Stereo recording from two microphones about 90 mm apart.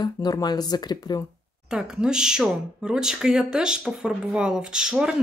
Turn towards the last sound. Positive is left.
turn(degrees=-10)  # may be behind; listen again after turning